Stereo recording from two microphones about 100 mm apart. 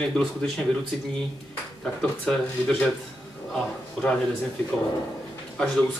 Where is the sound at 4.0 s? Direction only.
10° left (ahead or behind).